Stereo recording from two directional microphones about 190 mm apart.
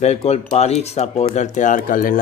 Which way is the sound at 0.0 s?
35° left (ahead or behind).